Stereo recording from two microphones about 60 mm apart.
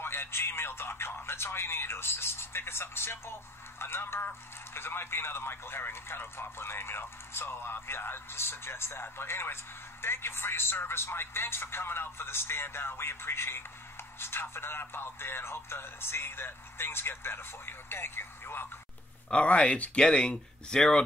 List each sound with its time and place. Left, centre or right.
0.0 s speech: left
19.3 s speech: centre